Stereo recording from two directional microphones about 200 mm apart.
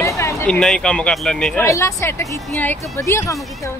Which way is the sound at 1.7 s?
15° left (ahead or behind).